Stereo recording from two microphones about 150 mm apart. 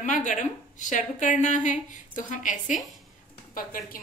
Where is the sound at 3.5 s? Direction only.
70° left (ahead or behind).